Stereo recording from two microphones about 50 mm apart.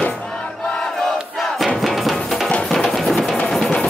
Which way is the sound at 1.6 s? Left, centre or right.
Centre.